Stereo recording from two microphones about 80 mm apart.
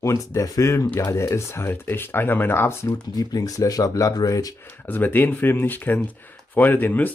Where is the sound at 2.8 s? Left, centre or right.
Left.